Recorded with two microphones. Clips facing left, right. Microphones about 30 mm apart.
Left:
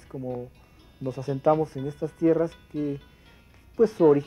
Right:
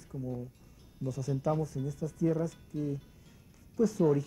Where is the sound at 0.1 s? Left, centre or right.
Left.